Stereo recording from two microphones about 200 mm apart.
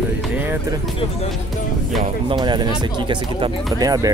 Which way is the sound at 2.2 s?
20° right (ahead or behind).